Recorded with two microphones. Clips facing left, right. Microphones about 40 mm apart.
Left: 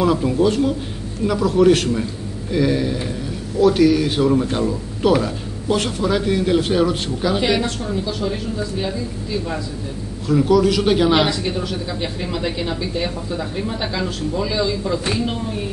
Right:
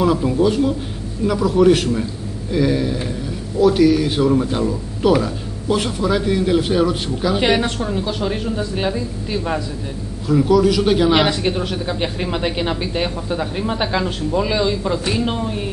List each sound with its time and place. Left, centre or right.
0.0 s a man's voice: centre
7.3 s a woman's voice: right
10.2 s a man's voice: centre
11.2 s speech: right